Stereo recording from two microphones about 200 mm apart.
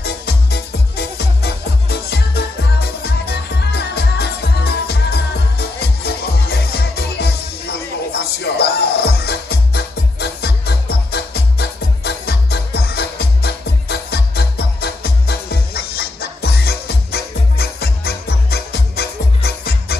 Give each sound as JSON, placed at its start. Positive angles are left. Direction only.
{"t": 0.0, "sound": "music", "side_deg": 55}